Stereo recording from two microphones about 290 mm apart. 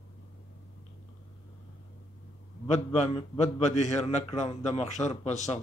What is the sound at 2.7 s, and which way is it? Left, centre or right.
A man's voice, left.